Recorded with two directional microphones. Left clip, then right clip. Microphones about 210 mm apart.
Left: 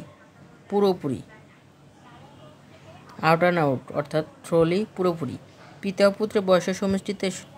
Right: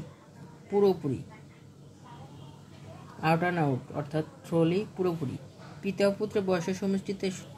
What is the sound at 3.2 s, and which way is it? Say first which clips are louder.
Speech: left 7 dB; 55° left (ahead or behind).